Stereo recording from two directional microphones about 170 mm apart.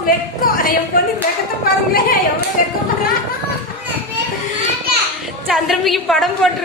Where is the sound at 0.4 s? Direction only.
55° left (ahead or behind).